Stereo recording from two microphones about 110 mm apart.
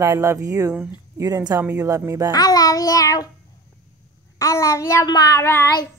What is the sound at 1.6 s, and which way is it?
Speech, 25° right (ahead or behind).